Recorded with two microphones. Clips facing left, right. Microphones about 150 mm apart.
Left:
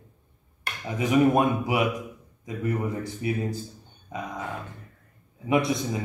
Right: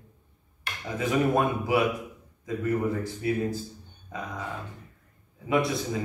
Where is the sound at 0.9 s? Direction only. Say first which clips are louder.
Left 4 dB; 15° left (ahead or behind).